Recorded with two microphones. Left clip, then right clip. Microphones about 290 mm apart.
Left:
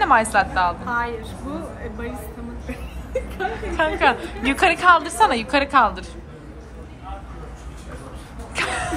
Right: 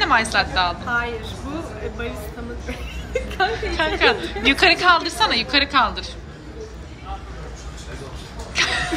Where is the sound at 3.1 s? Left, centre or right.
Centre.